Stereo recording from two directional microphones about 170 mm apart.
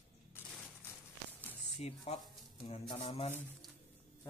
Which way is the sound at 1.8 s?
40° left (ahead or behind).